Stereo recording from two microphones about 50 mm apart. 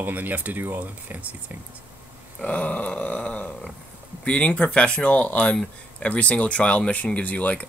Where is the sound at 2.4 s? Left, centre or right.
Left.